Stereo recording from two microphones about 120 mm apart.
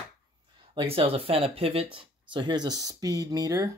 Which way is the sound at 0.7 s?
50° right (ahead or behind).